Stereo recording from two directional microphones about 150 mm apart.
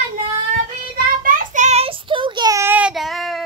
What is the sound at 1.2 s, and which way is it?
Child singing, 60° right (ahead or behind).